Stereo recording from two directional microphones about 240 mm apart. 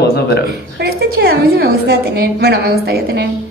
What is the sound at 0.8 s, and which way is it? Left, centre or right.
A woman's voice, right.